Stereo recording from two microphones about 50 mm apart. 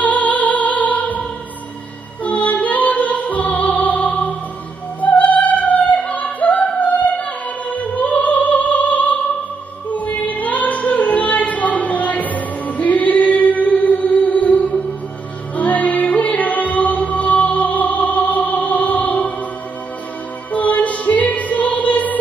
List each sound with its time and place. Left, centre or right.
0.0 s music: left
2.2 s music: left
7.7 s opera: left
9.8 s female singing: left
15.5 s music: left
20.5 s music: left